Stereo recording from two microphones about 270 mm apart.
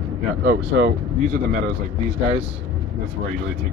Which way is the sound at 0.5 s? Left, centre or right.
Right.